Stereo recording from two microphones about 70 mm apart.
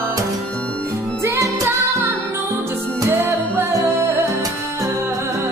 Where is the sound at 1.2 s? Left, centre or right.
Right.